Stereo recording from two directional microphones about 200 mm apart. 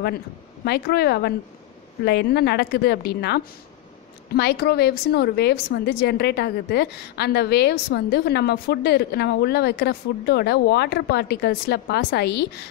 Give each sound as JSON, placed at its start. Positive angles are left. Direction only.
{"t": 0.7, "sound": "a woman's voice", "side_deg": 55}